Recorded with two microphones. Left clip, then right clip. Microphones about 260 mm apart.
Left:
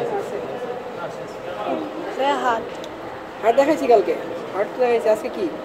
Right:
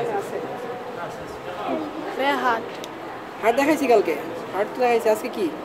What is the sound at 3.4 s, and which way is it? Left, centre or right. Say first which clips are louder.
A woman's voice: left 3 dB; right.